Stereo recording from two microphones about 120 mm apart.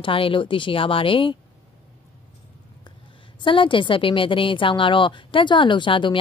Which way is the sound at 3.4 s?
45° left (ahead or behind).